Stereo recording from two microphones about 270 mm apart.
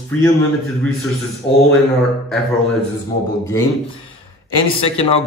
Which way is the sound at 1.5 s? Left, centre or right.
Centre.